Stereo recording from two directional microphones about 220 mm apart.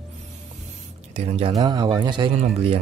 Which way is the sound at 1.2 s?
30° right (ahead or behind).